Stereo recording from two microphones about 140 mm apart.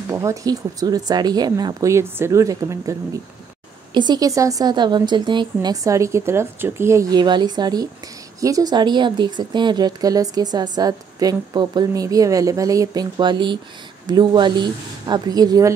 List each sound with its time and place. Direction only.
0.1 s speech: 20° right (ahead or behind)